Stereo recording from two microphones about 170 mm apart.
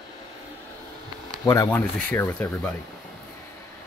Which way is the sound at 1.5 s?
15° left (ahead or behind).